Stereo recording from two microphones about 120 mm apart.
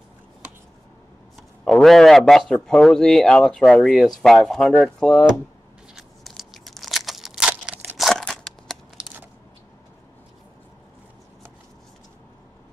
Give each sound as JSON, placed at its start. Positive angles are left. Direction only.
{"t": 1.6, "sound": "a man's voice", "side_deg": 5}
{"t": 5.9, "sound": "crunch", "side_deg": 0}
{"t": 8.0, "sound": "a sound", "side_deg": 5}